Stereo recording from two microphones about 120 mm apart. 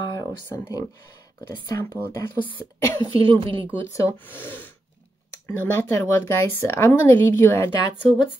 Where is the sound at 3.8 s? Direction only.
25° left (ahead or behind).